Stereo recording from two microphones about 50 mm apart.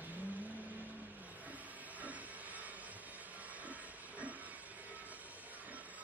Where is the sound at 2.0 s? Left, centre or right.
Right.